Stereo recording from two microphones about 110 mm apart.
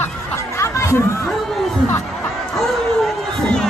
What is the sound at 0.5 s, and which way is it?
Chatter, 25° left (ahead or behind).